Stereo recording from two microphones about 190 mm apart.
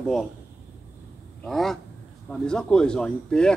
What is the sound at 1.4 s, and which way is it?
Speech, centre (ahead or behind).